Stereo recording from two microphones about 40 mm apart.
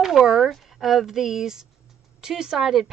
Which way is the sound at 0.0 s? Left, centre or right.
Centre.